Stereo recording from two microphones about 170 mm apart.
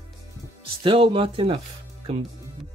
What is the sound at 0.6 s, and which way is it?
Speech, 30° right (ahead or behind).